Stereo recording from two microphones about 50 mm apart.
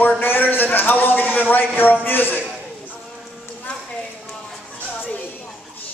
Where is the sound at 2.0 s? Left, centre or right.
Left.